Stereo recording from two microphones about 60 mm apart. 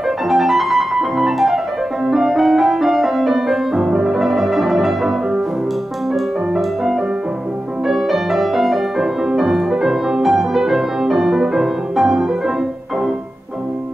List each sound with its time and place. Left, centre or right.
0.3 s music: centre